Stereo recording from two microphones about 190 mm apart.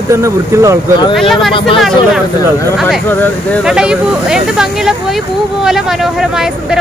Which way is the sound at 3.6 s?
5° right (ahead or behind).